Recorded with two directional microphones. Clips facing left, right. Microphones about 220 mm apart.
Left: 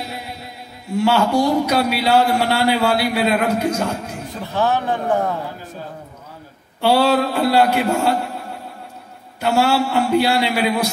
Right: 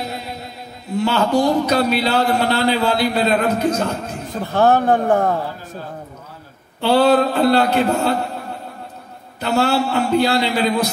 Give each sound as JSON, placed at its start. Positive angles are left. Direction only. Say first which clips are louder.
{"t": 0.9, "sound": "a man's voice", "louder": "left 1 dB", "side_deg": 10}
{"t": 4.4, "sound": "speech", "louder": "right 5 dB", "side_deg": -50}
{"t": 6.8, "sound": "a man's voice", "louder": "right 2 dB", "side_deg": 10}
{"t": 9.4, "sound": "a man's voice", "louder": "left 1 dB", "side_deg": 10}